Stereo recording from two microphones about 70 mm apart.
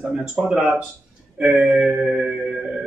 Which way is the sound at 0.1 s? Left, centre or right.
Centre.